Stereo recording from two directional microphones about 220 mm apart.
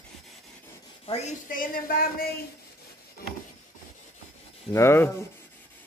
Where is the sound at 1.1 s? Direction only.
35° left (ahead or behind).